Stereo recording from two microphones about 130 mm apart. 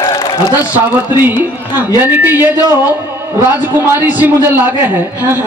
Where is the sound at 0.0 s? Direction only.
40° left (ahead or behind).